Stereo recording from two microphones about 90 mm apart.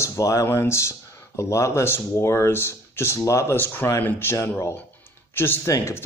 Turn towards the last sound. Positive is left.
turn(degrees=30)  # may be behind; listen again after turning